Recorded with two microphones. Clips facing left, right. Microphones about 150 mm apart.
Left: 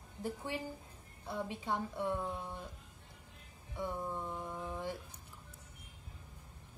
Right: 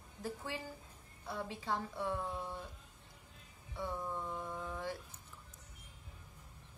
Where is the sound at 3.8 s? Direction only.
15° left (ahead or behind).